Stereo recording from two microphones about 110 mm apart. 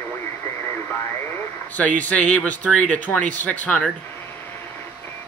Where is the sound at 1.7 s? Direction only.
15° left (ahead or behind).